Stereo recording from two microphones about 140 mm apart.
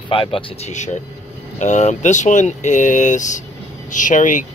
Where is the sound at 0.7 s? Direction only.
55° left (ahead or behind).